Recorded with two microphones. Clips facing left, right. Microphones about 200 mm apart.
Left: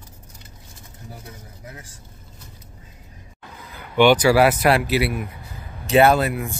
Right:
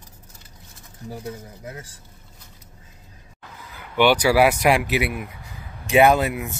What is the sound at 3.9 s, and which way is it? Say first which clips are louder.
Speech: left 3 dB; 10° right (ahead or behind).